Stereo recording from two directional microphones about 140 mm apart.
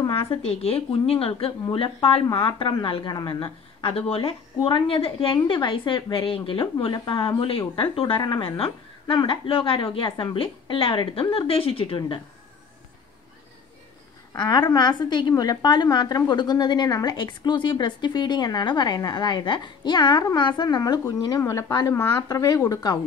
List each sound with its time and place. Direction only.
0.3 s a woman's voice: 45° left (ahead or behind)
14.3 s a woman's voice: 30° left (ahead or behind)